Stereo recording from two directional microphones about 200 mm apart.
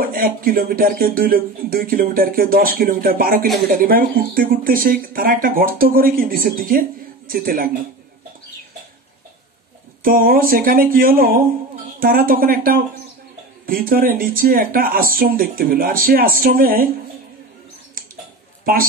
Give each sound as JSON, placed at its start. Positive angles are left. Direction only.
{"t": 0.0, "sound": "speech", "side_deg": -45}
{"t": 10.0, "sound": "speech", "side_deg": -45}
{"t": 18.6, "sound": "a woman's voice", "side_deg": -45}